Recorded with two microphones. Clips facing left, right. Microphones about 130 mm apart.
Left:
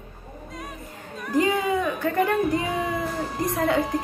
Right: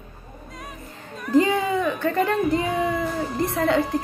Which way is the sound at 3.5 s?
20° left (ahead or behind).